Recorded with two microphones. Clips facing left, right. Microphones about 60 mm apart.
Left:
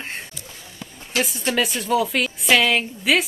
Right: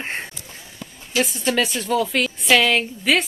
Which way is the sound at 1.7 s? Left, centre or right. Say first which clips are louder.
Even; centre.